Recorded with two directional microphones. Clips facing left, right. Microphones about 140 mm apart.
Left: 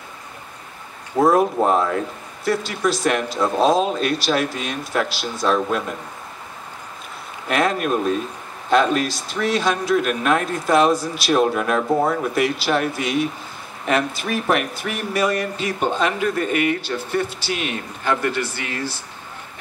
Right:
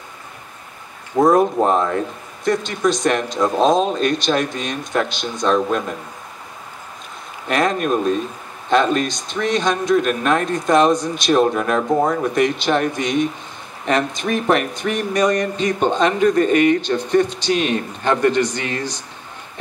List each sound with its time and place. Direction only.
1.2 s speech: centre (ahead or behind)
7.4 s speech: centre (ahead or behind)
18.7 s speech: 20° right (ahead or behind)